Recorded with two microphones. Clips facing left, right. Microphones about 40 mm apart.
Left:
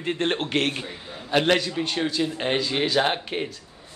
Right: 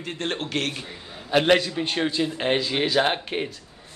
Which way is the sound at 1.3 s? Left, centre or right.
Centre.